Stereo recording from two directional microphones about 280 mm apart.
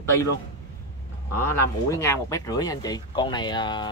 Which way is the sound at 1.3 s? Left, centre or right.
Centre.